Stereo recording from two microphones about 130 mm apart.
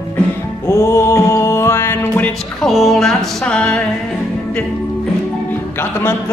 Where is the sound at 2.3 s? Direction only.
Centre (ahead or behind); by 6.1 s 20° left (ahead or behind).